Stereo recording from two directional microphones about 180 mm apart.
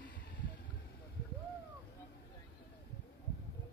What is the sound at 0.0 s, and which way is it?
Vehicle, 80° left.